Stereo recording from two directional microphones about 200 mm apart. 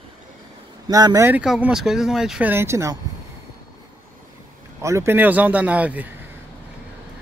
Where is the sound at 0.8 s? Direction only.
15° right (ahead or behind).